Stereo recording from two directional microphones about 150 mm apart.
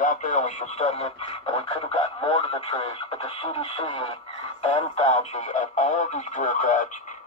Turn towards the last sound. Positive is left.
turn(degrees=55)  # may be behind; listen again after turning